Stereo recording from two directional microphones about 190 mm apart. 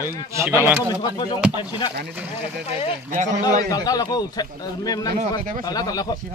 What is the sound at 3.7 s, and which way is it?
A man's voice, 20° left (ahead or behind).